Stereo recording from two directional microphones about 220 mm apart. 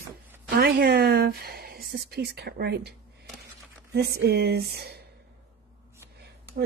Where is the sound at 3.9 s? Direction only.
45° right (ahead or behind).